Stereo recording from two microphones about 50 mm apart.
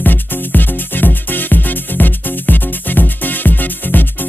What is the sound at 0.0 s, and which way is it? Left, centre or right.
Music, left.